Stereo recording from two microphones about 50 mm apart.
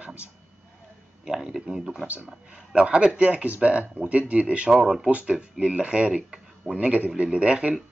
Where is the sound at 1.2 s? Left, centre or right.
Centre; by 4.6 s right.